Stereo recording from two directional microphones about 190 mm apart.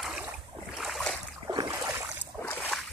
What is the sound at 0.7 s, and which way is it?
Boat, centre (ahead or behind).